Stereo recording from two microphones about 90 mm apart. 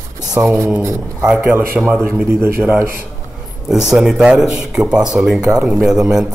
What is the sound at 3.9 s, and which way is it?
Speech, 5° right (ahead or behind).